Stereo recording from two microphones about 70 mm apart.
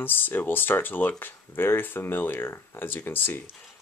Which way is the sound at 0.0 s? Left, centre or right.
Left.